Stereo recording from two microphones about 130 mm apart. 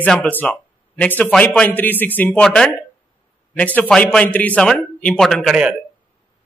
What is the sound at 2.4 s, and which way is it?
A man's voice, 5° left (ahead or behind).